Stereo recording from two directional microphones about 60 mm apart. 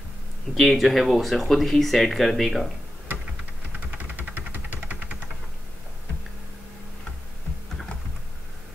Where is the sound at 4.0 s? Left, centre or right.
Right.